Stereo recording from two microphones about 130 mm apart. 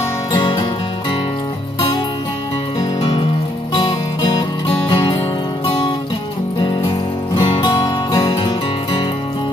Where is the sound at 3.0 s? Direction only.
45° left (ahead or behind).